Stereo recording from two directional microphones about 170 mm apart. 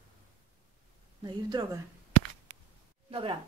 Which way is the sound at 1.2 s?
25° right (ahead or behind).